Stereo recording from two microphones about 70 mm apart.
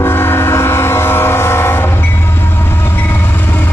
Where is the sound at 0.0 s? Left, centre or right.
Left.